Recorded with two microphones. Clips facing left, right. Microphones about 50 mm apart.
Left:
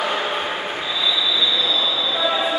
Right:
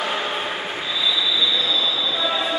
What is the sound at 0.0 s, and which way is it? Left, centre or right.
Train, centre.